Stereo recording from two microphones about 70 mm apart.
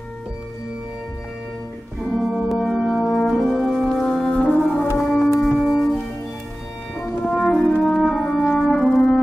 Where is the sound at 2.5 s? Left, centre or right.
Centre.